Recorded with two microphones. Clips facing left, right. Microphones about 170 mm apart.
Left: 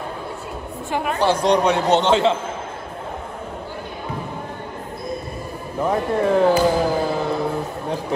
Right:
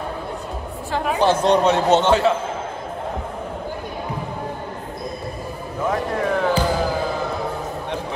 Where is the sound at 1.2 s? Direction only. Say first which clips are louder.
Right 1 dB; 15° left (ahead or behind).